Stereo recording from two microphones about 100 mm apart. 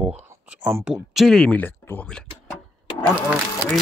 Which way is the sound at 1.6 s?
20° left (ahead or behind).